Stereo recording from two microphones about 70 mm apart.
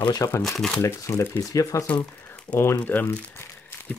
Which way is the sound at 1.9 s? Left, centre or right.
Left.